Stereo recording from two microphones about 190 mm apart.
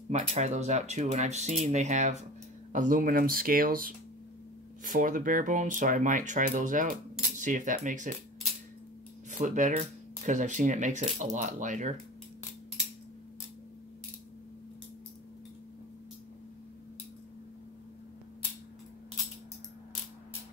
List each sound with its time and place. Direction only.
0.3 s speech: 35° right (ahead or behind)
9.4 s speech: 40° right (ahead or behind)